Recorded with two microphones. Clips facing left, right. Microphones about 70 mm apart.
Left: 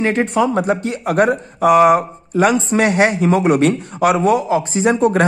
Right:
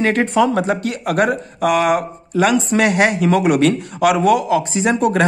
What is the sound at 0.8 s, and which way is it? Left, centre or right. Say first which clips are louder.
Speech: left 2 dB; left.